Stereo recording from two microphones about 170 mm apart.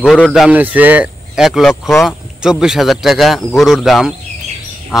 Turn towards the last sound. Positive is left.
turn(degrees=0)  # may be behind; listen again after turning